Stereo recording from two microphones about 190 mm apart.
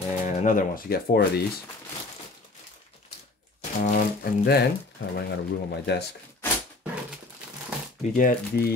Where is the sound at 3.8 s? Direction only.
45° left (ahead or behind).